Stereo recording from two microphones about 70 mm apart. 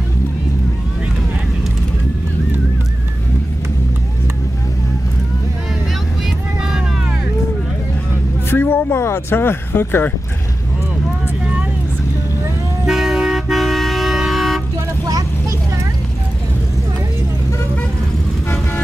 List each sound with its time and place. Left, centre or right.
8.5 s speech: left
12.8 s toot: centre